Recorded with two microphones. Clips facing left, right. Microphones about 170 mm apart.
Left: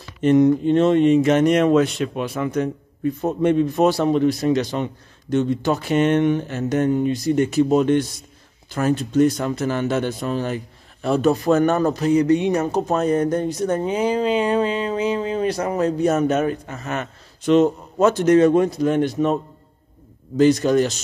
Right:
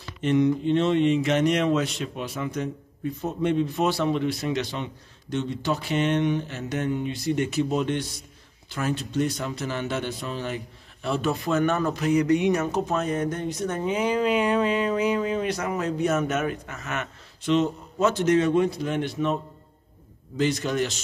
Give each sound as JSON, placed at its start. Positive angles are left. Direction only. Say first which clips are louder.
{"t": 0.2, "sound": "speech", "louder": "left 7 dB", "side_deg": 45}
{"t": 20.3, "sound": "speech", "louder": "left 9 dB", "side_deg": 40}